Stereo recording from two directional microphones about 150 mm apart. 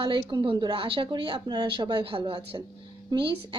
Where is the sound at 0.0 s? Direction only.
35° right (ahead or behind).